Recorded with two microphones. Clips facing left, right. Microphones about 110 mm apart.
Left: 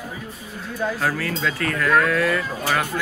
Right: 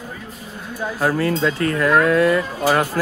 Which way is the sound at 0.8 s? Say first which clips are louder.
Right 5 dB; 20° right (ahead or behind).